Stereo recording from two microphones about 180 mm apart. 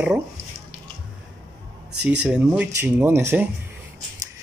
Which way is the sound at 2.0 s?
5° right (ahead or behind).